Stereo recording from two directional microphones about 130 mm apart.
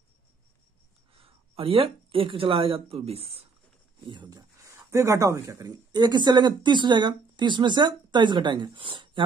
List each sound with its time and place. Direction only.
1.1 s speech: 45° right (ahead or behind)
4.1 s speech: 35° right (ahead or behind)